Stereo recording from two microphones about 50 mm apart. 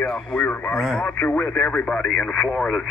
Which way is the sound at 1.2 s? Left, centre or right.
Left.